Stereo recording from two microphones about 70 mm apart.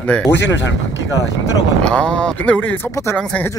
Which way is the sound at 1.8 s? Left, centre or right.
Centre.